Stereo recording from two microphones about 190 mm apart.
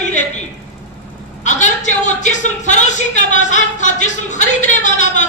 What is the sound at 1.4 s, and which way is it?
A woman's voice, 40° left (ahead or behind).